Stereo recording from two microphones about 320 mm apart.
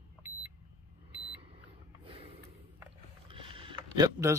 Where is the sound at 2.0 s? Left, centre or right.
Centre.